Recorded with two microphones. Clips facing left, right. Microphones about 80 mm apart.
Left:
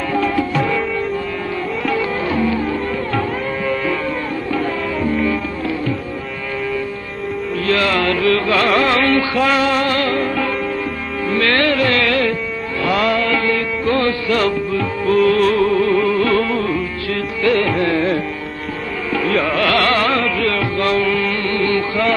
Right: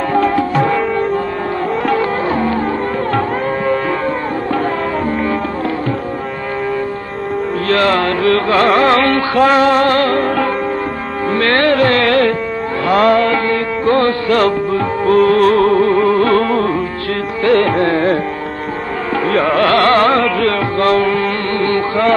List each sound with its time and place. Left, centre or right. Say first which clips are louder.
0.1 s music: right 4 dB; right
1.9 s music: right 3 dB; right
5.0 s music: right 1 dB; right
7.6 s carnatic music: right 3 dB; right
11.3 s music: right 4 dB; right
19.2 s carnatic music: right 5 dB; right
20.3 s music: right 4 dB; right